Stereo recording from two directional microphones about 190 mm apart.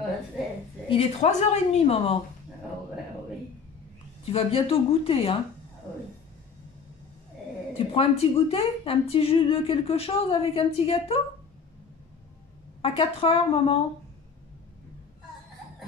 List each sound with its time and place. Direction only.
0.8 s a woman's voice: 30° left (ahead or behind)
4.3 s speech: 30° left (ahead or behind)
7.9 s speech: 30° left (ahead or behind)
12.8 s speech: 30° left (ahead or behind)